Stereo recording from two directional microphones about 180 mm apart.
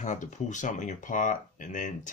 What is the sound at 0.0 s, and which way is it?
Speech, 40° left (ahead or behind).